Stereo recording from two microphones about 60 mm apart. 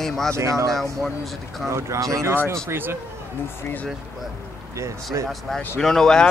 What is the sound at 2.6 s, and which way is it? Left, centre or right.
Speech, right.